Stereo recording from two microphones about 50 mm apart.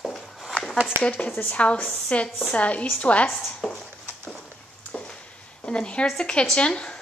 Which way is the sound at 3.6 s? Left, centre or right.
Centre.